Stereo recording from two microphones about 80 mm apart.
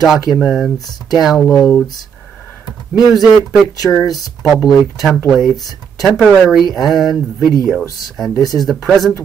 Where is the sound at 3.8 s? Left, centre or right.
Left.